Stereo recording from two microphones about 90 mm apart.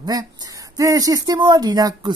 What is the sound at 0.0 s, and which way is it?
Speech, 45° right (ahead or behind).